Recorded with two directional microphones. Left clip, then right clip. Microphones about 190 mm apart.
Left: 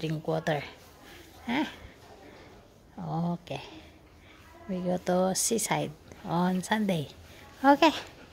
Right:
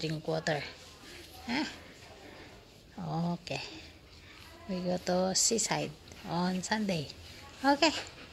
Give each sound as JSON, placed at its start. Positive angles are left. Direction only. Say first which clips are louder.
{"t": 0.0, "sound": "a woman's voice", "louder": "left 3 dB", "side_deg": 20}
{"t": 3.0, "sound": "a woman's voice", "louder": "left 2 dB", "side_deg": 10}